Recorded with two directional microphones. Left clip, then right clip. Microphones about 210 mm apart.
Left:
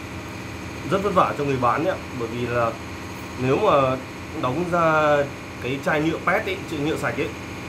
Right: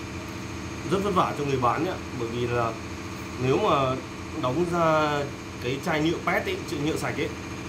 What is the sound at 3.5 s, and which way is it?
Speech, 15° right (ahead or behind).